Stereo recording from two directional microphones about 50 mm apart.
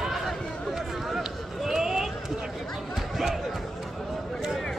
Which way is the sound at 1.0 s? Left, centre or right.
Centre.